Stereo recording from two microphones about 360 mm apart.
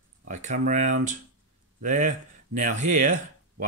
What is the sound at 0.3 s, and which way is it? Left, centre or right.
Speech, centre.